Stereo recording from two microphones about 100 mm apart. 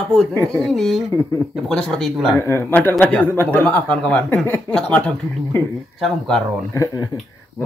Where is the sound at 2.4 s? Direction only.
25° left (ahead or behind).